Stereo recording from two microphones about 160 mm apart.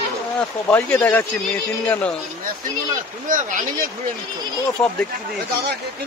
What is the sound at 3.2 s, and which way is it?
Speech, 55° right (ahead or behind).